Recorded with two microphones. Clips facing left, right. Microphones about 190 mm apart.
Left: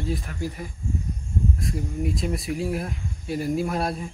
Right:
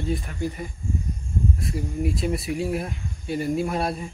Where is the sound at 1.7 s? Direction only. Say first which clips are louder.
Right 1 dB; 5° right (ahead or behind).